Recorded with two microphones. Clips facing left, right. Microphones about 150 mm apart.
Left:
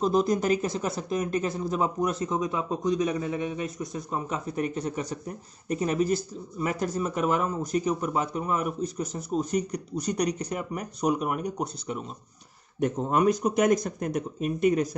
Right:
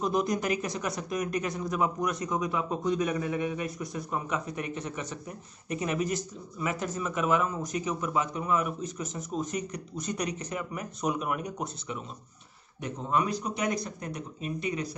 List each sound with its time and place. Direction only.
0.0 s a man's voice: 30° left (ahead or behind); by 14.9 s 45° left (ahead or behind)